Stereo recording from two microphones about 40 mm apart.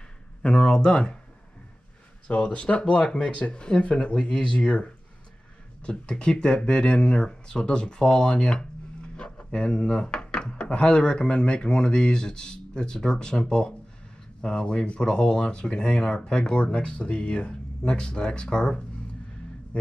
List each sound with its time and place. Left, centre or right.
0.4 s speech: left
2.2 s speech: left
8.0 s a sound: centre
9.5 s speech: left